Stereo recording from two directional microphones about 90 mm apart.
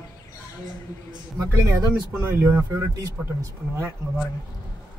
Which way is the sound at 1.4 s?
45° right (ahead or behind).